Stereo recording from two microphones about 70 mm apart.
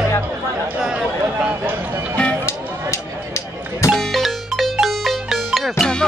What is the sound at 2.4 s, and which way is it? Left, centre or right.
Music, left.